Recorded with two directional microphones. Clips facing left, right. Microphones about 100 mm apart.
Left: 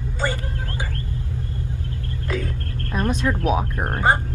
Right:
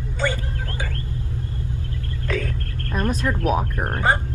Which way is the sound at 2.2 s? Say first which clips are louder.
Right 1 dB; 20° left (ahead or behind).